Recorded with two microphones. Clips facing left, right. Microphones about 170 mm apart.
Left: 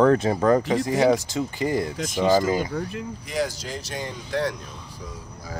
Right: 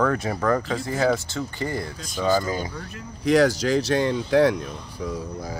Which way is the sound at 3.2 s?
85° right.